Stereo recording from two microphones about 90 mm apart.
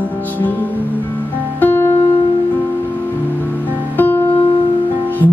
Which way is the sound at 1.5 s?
25° left (ahead or behind).